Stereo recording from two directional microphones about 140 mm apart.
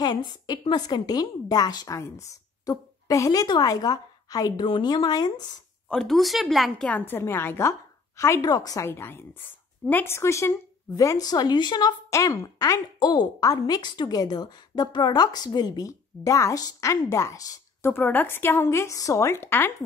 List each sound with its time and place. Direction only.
0.0 s a woman's voice: 30° left (ahead or behind)
5.9 s a woman's voice: 5° left (ahead or behind); by 8.8 s 25° left (ahead or behind)
8.8 s a woman's voice: 15° left (ahead or behind)